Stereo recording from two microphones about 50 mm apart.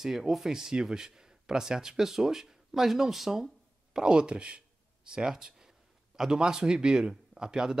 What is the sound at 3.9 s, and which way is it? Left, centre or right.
Speech, centre.